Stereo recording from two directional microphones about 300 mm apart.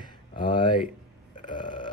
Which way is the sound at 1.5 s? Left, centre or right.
Centre.